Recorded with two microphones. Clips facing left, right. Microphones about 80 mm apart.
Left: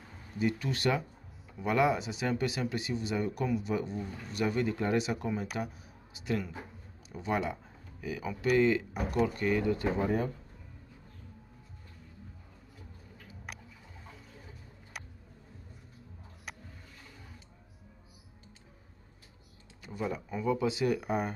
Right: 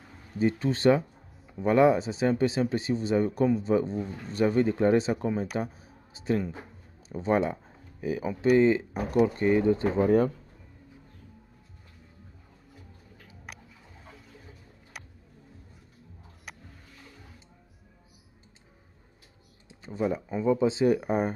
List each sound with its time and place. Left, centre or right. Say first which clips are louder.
0.4 s speech: right 6 dB; right
9.9 s speech: right 8 dB; right
13.5 s music: even; centre
19.7 s speech: right 7 dB; right